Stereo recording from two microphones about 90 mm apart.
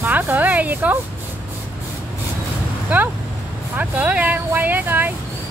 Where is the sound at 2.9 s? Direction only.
20° right (ahead or behind).